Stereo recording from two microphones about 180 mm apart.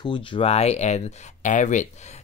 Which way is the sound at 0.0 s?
25° left (ahead or behind).